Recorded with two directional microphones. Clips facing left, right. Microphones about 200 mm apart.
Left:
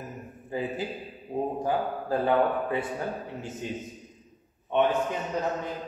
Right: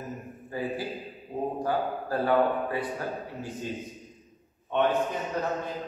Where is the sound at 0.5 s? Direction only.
20° left (ahead or behind).